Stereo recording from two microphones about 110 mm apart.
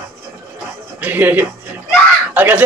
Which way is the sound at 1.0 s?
15° right (ahead or behind).